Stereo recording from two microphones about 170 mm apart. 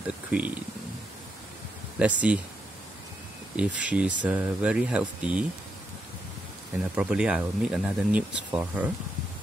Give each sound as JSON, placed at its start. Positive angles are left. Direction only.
{"t": 0.3, "sound": "speech", "side_deg": -10}
{"t": 2.0, "sound": "speech", "side_deg": -10}
{"t": 3.5, "sound": "speech", "side_deg": -5}
{"t": 7.0, "sound": "speech", "side_deg": -5}